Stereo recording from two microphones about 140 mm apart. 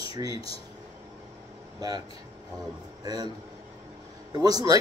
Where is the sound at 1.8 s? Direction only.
30° right (ahead or behind).